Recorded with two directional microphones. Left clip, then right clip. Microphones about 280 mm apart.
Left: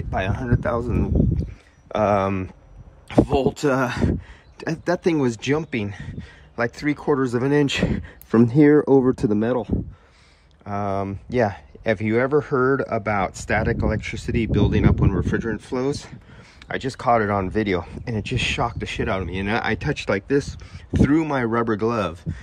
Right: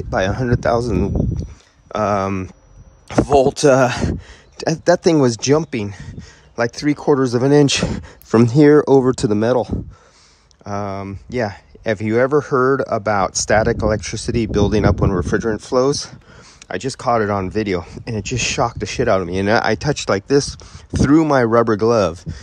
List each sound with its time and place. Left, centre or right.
0.1 s speech: right
1.9 s speech: centre
3.3 s speech: centre
8.3 s speech: left
10.6 s speech: centre